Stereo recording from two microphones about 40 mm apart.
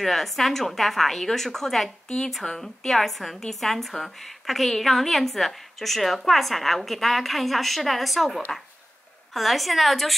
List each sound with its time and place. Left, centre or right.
0.0 s a woman's voice: centre
2.6 s a woman's voice: centre